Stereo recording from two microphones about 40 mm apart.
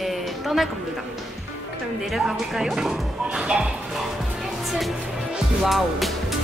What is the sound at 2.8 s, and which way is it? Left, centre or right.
Speech, right.